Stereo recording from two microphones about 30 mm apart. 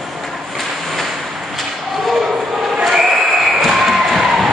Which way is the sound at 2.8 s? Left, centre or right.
Centre.